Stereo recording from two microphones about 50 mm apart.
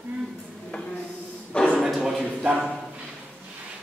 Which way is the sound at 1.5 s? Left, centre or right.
Left.